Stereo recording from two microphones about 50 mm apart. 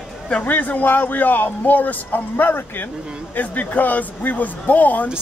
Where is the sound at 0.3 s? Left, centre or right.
Left.